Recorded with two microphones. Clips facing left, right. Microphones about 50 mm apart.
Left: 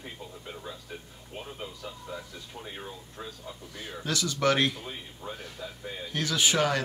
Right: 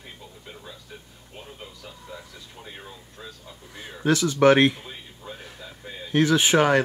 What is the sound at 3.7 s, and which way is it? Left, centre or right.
Speech, right.